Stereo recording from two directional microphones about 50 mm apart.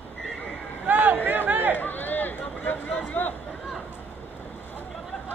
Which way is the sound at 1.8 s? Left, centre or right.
Left.